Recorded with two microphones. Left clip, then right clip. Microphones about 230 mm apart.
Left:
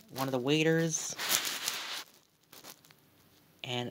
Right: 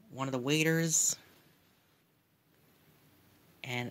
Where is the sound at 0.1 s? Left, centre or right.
Right.